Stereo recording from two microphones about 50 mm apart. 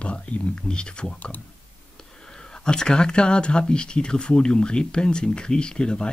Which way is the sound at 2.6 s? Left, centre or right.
Centre.